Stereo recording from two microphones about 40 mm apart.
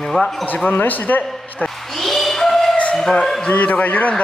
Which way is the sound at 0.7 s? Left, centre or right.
Left.